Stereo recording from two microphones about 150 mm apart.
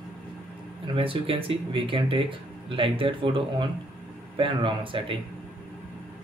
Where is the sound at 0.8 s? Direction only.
35° right (ahead or behind).